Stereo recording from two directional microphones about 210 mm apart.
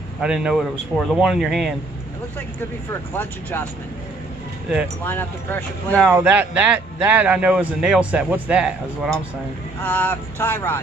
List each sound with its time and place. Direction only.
0.2 s a man's voice: 5° right (ahead or behind)
2.9 s speech: 10° left (ahead or behind)
5.0 s speech: 10° left (ahead or behind)
6.0 s a man's voice: 5° right (ahead or behind); by 10.8 s 10° left (ahead or behind)